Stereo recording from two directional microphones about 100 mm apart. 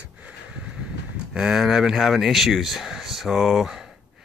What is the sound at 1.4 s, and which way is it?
Speech, 5° right (ahead or behind).